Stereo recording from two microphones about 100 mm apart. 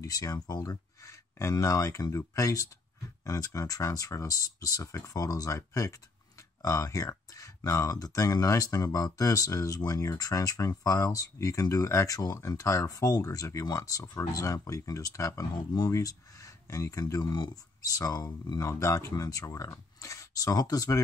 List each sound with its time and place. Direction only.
0.0 s speech: 35° left (ahead or behind)
17.0 s speech: 45° left (ahead or behind)